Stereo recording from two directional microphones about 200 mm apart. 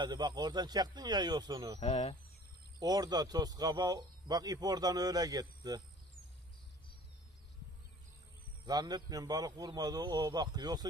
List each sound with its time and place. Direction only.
0.0 s speech: 20° right (ahead or behind)
2.8 s speech: 20° right (ahead or behind)
8.6 s speech: 20° right (ahead or behind)